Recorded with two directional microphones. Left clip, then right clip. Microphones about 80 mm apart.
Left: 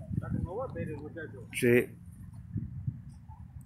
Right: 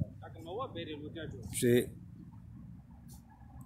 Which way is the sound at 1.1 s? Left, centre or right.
Centre.